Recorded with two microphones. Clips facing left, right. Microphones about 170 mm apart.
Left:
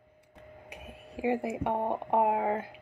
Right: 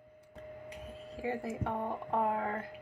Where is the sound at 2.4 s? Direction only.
90° left.